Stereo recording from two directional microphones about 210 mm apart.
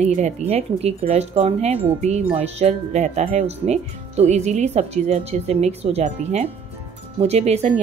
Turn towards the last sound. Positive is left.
turn(degrees=-30)  # may be behind; listen again after turning